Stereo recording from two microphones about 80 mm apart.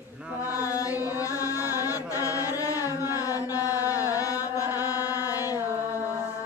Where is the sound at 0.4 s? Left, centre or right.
Left.